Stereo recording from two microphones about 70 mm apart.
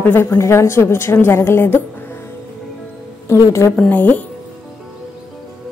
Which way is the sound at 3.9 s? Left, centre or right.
Left.